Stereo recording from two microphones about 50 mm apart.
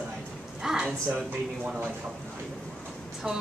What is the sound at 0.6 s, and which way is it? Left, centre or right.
Speech, centre.